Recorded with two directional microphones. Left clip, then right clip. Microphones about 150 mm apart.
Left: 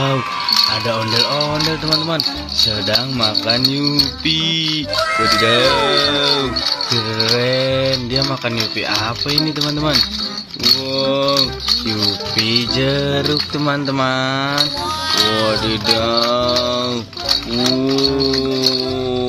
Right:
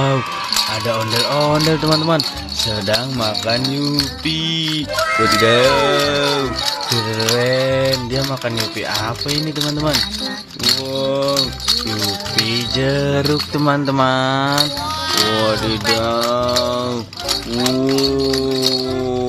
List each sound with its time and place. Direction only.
1.4 s music: 25° right (ahead or behind)
2.9 s music: 5° right (ahead or behind)
4.9 s rattle: centre (ahead or behind)
5.4 s music: 20° right (ahead or behind)
7.2 s rattle: 5° right (ahead or behind)
11.0 s rattle: 5° right (ahead or behind)
12.4 s music: centre (ahead or behind); by 14.7 s 20° right (ahead or behind)
15.2 s rattle: centre (ahead or behind)
16.0 s music: 10° right (ahead or behind)